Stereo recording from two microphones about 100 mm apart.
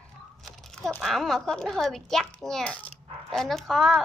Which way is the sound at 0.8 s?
5° left (ahead or behind).